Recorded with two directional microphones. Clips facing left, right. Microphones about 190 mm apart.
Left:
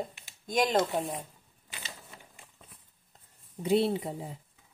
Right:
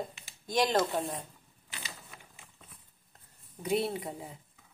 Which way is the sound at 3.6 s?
30° left (ahead or behind).